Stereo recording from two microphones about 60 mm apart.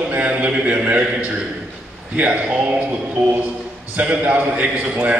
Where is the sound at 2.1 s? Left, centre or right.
Right.